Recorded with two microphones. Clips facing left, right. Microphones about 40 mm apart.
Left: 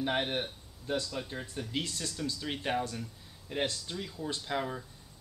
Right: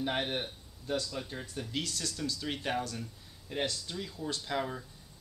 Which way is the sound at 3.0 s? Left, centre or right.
Centre.